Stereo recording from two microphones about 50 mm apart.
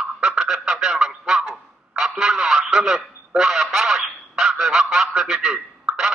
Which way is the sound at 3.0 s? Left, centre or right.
Centre.